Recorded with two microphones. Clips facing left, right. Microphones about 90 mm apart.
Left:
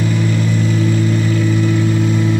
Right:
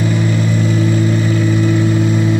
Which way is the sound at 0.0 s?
15° right (ahead or behind).